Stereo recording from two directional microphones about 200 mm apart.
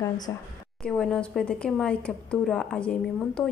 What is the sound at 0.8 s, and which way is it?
Speech, 5° left (ahead or behind).